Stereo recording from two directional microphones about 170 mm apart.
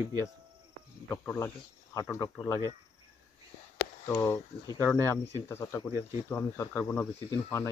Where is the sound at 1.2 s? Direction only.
10° left (ahead or behind).